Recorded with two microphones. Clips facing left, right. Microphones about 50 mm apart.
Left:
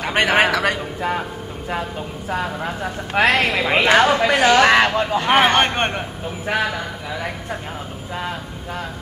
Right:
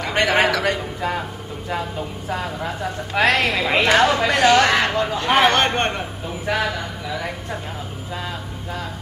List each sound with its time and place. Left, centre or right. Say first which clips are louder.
0.0 s a man's voice: left 1 dB; left
4.7 s speech: left 3 dB; left
8.1 s speech: left 3 dB; left